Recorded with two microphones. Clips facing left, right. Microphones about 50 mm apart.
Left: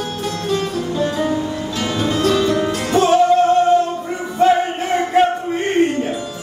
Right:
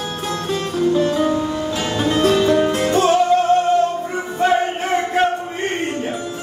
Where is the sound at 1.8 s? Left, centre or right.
Centre.